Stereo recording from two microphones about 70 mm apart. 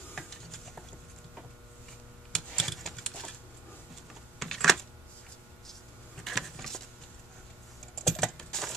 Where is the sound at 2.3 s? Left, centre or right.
Centre.